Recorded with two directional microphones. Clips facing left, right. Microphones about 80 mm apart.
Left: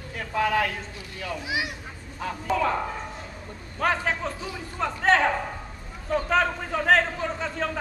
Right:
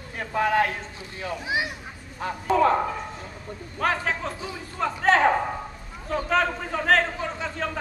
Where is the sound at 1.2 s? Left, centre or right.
Right.